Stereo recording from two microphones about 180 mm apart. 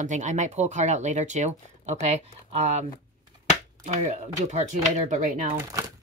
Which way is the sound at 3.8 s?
40° right (ahead or behind).